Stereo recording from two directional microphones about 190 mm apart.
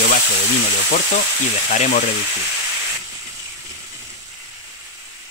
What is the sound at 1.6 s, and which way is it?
Speech, 40° left (ahead or behind).